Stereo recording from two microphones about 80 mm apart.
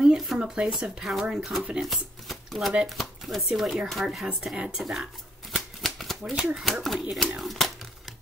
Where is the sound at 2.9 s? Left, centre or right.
Centre.